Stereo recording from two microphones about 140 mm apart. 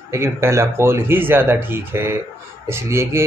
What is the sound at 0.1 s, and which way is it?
Speech, 20° right (ahead or behind).